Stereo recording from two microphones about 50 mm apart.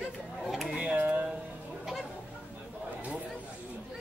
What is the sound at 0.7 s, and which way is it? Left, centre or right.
Speech, right.